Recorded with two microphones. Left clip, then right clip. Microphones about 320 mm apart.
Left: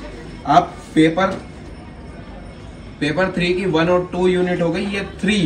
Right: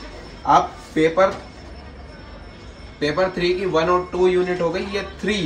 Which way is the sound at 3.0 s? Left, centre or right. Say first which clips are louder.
Left 1 dB; right.